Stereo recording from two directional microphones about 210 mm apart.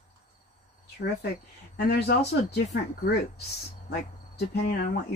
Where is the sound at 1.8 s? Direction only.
50° left (ahead or behind).